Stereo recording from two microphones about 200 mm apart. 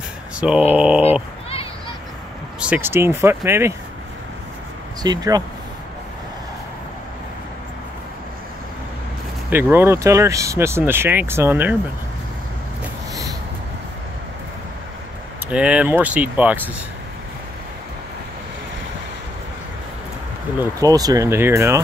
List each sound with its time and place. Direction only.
0.4 s speech: 5° right (ahead or behind)
2.6 s speech: 10° right (ahead or behind)
5.0 s speech: 20° right (ahead or behind)
9.5 s speech: 10° right (ahead or behind)
15.5 s speech: 5° right (ahead or behind)
20.5 s speech: 15° right (ahead or behind)